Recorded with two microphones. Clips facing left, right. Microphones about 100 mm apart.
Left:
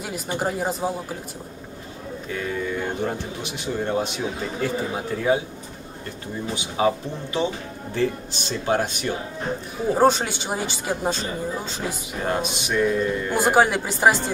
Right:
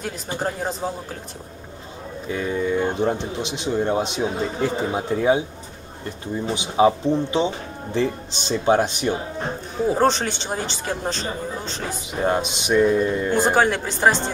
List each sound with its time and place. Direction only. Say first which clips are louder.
0.0 s speech: even; 10° left (ahead or behind)
2.3 s speech: right 5 dB; 25° right (ahead or behind)
6.4 s speech: right 5 dB; 20° right (ahead or behind)
9.9 s speech: left 4 dB; 10° left (ahead or behind)
12.3 s speech: right 4 dB; 20° right (ahead or behind)
13.3 s speech: left 2 dB; 10° left (ahead or behind)